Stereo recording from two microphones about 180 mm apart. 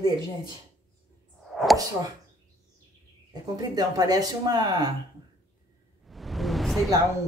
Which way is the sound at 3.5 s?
20° right (ahead or behind).